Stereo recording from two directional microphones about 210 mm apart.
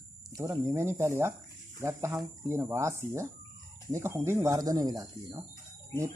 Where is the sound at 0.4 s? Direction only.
15° right (ahead or behind).